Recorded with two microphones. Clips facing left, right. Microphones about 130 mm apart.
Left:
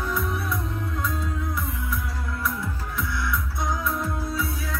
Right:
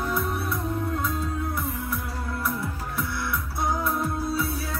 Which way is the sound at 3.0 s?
60° right (ahead or behind).